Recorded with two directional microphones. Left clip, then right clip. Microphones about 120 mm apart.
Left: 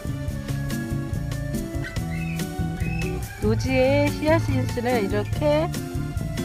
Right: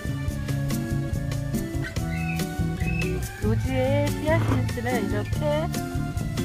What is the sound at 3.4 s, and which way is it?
Speech, 25° left (ahead or behind).